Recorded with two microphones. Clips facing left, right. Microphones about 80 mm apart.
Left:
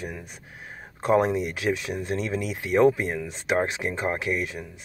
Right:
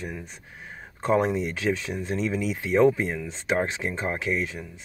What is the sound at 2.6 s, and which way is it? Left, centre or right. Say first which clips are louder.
Speech: left 1 dB; centre.